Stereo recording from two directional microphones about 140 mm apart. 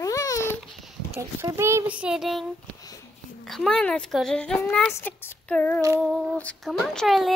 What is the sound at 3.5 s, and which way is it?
Speech, 5° left (ahead or behind).